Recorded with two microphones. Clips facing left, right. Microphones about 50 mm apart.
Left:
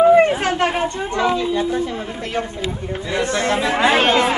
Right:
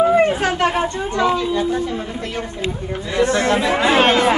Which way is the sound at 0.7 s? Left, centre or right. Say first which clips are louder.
Right 1 dB; left.